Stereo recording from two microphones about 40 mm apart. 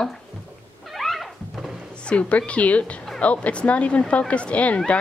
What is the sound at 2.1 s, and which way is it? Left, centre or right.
A woman's voice, left.